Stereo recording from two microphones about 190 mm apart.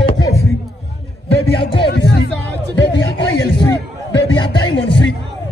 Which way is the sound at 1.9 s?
60° left (ahead or behind).